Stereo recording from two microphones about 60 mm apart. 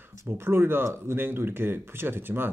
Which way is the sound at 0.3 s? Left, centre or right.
Right.